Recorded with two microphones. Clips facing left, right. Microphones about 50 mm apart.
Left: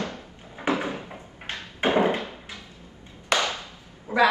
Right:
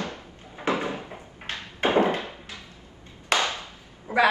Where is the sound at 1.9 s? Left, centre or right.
Left.